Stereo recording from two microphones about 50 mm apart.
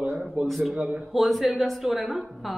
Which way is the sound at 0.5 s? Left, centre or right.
Centre.